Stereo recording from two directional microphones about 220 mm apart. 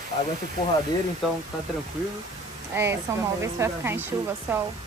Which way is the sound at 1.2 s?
Centre (ahead or behind).